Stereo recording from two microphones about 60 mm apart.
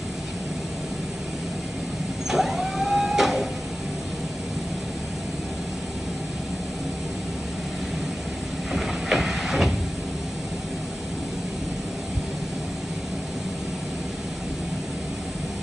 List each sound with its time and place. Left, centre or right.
2.2 s vehicle: centre
8.7 s train: centre